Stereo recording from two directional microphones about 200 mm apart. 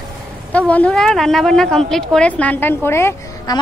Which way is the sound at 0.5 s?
5° left (ahead or behind).